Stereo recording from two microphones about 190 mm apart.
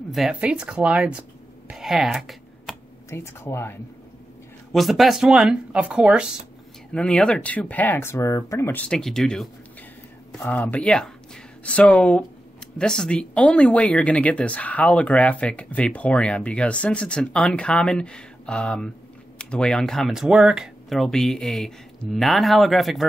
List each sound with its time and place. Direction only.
0.1 s speech: 5° right (ahead or behind)
3.1 s speech: 10° left (ahead or behind)
4.7 s speech: centre (ahead or behind)
6.9 s speech: 5° left (ahead or behind)